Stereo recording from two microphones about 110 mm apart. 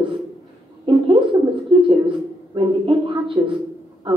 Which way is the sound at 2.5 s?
50° right (ahead or behind).